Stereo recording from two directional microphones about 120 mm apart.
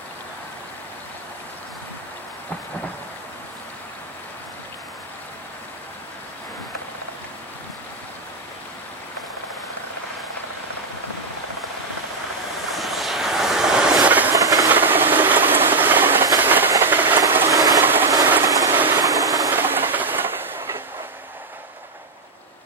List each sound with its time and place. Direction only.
12.7 s vehicle: centre (ahead or behind)
14.3 s train: 30° right (ahead or behind)
14.7 s train: 15° right (ahead or behind)
17.3 s vehicle: 15° right (ahead or behind)
17.6 s train: 30° right (ahead or behind)
17.8 s train: 15° right (ahead or behind)
18.1 s rain: 20° right (ahead or behind)
18.9 s vehicle: 30° right (ahead or behind)
19.5 s train: 15° right (ahead or behind)